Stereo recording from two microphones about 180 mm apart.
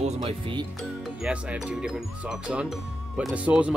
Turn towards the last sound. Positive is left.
turn(degrees=-5)  # may be behind; listen again after turning